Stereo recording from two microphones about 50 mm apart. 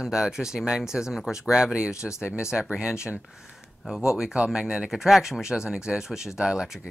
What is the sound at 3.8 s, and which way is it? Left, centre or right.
Speech, centre.